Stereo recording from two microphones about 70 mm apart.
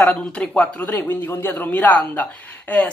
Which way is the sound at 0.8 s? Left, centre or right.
Left.